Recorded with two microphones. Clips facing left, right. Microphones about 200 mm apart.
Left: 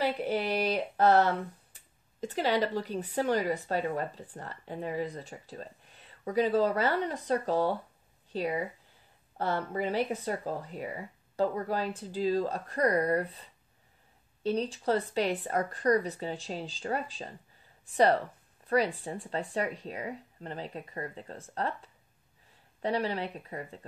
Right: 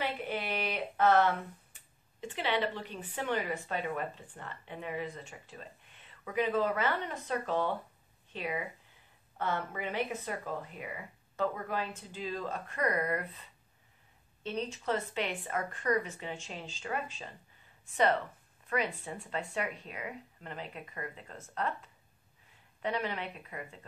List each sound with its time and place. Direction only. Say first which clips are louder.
0.0 s speech: left 6 dB; 40° left (ahead or behind)